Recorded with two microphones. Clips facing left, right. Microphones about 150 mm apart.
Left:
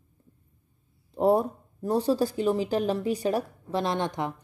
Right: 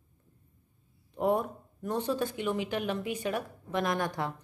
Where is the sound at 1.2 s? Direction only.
35° left (ahead or behind).